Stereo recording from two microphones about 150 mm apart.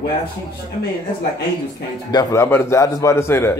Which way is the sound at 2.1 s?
25° left (ahead or behind).